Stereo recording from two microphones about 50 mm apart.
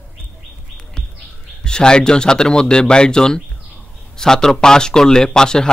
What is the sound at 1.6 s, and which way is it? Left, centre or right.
A man's voice, centre.